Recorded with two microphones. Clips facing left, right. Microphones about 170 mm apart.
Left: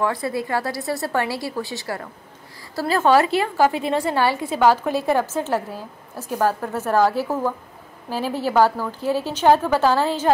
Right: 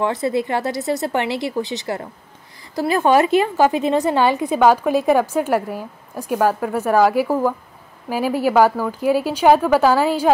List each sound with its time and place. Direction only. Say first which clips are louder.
0.0 s a woman's voice: right 3 dB; 20° right (ahead or behind)